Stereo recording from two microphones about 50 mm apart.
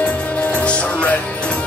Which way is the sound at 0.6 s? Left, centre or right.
Left.